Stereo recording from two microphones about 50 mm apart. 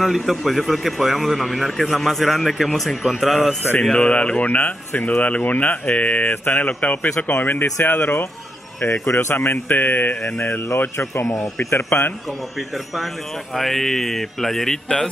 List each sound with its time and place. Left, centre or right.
0.0 s a man's voice: centre
3.9 s speech: left
8.8 s speech: left
11.0 s speech: left
11.7 s speech: left
13.6 s a man's voice: centre